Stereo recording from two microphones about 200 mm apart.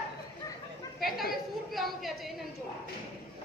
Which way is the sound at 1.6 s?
Centre (ahead or behind).